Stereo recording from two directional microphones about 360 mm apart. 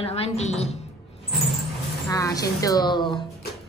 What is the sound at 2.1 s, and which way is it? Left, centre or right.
A woman's voice, centre.